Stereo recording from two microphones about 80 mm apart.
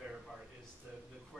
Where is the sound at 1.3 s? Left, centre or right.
Centre.